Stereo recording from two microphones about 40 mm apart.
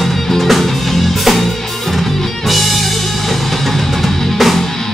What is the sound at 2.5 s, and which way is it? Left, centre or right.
Music, centre.